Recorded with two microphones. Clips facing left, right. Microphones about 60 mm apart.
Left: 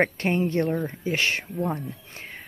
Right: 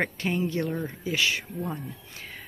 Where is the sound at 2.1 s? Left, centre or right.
Left.